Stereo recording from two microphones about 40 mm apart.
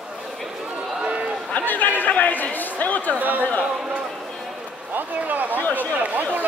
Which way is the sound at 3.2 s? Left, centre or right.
Right.